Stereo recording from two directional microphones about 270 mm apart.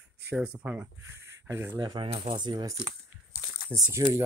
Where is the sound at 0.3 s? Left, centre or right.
Centre.